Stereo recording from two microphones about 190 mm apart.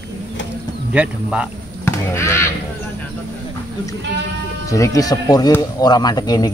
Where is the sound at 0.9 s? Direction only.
5° right (ahead or behind).